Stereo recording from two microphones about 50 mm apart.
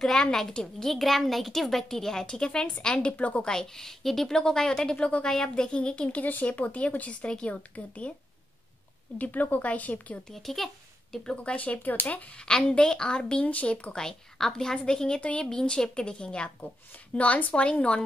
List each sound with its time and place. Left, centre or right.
0.0 s a woman's voice: centre
0.8 s a woman's voice: centre; by 3.4 s left
3.4 s a woman's voice: centre
4.9 s speech: left
5.2 s a woman's voice: centre
6.2 s speech: left
9.2 s speech: left
10.3 s a child's voice: centre
11.3 s speech: left
12.4 s a woman's voice: centre
13.9 s a woman's voice: centre
15.5 s a woman's voice: centre